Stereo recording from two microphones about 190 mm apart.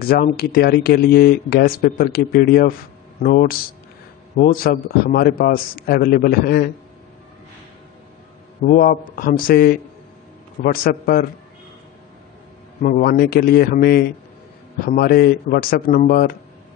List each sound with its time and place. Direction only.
0.0 s speech: 50° left (ahead or behind)
8.6 s speech: 45° left (ahead or behind)
12.8 s speech: 50° left (ahead or behind)